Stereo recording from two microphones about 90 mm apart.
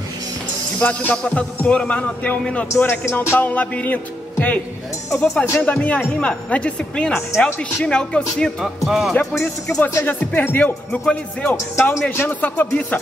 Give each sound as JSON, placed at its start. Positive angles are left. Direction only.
{"t": 0.7, "sound": "speech", "side_deg": 15}
{"t": 5.1, "sound": "speech", "side_deg": 10}
{"t": 7.2, "sound": "speech", "side_deg": 25}
{"t": 7.8, "sound": "speech", "side_deg": 10}
{"t": 8.6, "sound": "music", "side_deg": -5}
{"t": 10.0, "sound": "speech", "side_deg": 20}
{"t": 11.5, "sound": "speech", "side_deg": 30}